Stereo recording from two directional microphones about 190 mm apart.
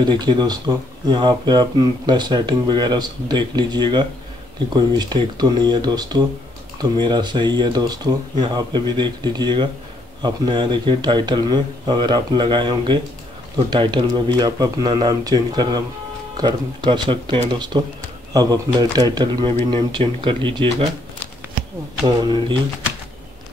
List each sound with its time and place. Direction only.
0.0 s speech: 25° right (ahead or behind)
22.0 s speech: 25° right (ahead or behind)